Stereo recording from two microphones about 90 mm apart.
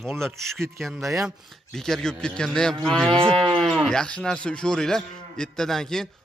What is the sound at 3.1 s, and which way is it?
Moo, 85° right.